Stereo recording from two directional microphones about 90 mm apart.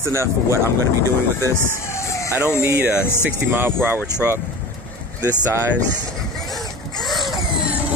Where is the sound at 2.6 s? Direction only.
20° right (ahead or behind).